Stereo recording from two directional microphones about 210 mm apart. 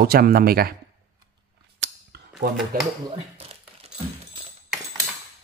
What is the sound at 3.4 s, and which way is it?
Crumpling, 30° right (ahead or behind).